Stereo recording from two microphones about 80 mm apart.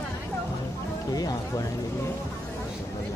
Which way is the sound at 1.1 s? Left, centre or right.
Left.